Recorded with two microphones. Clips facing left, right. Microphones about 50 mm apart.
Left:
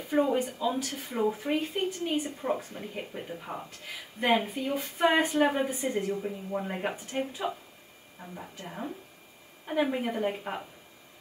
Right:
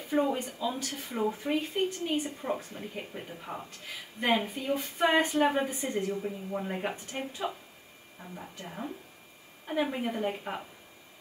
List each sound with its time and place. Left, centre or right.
0.1 s a woman's voice: centre